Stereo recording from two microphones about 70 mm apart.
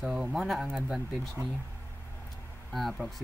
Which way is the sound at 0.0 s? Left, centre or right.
Centre.